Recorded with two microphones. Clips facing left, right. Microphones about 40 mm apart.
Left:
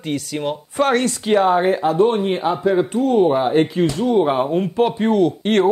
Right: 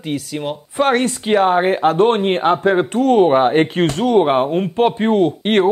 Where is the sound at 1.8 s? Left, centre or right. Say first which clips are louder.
Right 2 dB; right.